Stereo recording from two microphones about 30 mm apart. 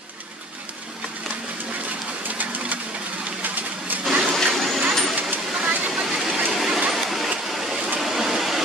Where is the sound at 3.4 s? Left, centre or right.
Right.